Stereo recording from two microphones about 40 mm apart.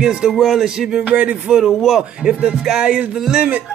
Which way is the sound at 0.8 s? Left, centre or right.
Right.